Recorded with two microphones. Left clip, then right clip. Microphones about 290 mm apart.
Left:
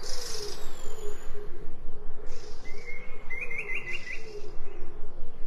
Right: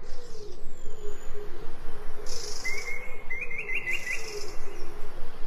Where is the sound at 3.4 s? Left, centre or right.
Centre.